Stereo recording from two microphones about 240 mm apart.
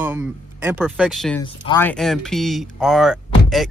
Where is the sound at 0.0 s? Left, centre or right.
Centre.